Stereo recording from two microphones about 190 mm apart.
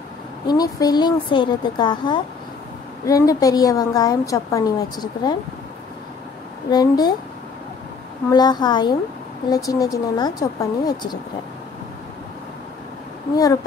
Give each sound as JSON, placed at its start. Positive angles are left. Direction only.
{"t": 0.5, "sound": "a woman's voice", "side_deg": 20}
{"t": 6.7, "sound": "a woman's voice", "side_deg": 20}
{"t": 8.3, "sound": "a woman's voice", "side_deg": 20}